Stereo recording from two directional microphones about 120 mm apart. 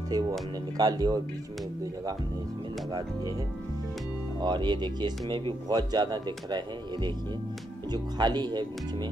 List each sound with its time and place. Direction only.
0.1 s speech: 30° right (ahead or behind)
2.9 s speech: 35° right (ahead or behind)
4.4 s speech: 40° right (ahead or behind)